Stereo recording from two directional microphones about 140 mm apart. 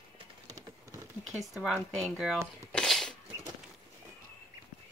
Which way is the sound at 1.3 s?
Centre (ahead or behind).